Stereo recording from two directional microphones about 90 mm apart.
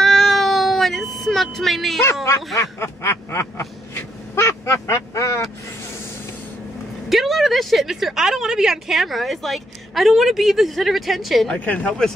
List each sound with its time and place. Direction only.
0.0 s meow: 5° left (ahead or behind)
2.5 s vehicle: 35° left (ahead or behind)
7.1 s speech: centre (ahead or behind)
11.5 s speech: 15° left (ahead or behind)